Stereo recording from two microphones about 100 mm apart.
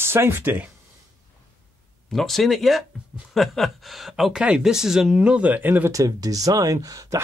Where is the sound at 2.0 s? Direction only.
5° left (ahead or behind); by 5.9 s 15° right (ahead or behind).